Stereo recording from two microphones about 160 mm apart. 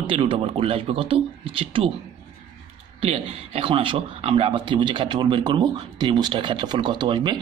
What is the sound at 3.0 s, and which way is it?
A man's voice, 40° right (ahead or behind).